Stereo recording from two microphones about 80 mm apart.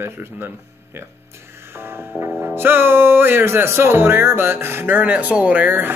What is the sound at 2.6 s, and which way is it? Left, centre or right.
Speech, right.